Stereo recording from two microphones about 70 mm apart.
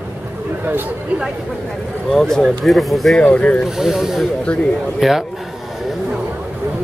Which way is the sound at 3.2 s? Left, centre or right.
Centre.